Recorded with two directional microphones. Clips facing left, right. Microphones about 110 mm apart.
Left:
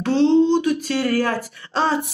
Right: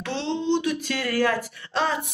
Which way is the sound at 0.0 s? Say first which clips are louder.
Left 12 dB; 40° left (ahead or behind).